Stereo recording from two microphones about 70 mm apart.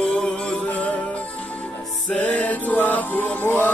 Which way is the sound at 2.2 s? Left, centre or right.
Left.